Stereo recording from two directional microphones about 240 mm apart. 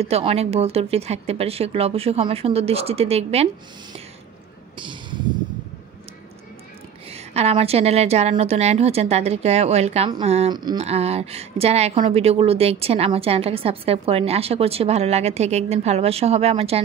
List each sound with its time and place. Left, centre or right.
0.0 s a woman's voice: right
4.7 s a sound: centre
7.1 s a woman's voice: right